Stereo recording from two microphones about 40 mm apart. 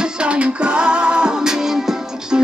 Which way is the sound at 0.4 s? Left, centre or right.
Right.